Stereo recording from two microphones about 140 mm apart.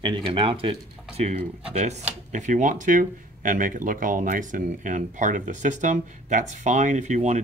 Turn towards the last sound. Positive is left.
turn(degrees=-60)  # may be behind; listen again after turning